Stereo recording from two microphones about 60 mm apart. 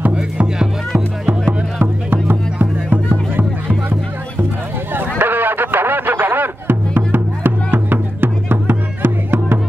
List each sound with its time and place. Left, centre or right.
0.0 s music: right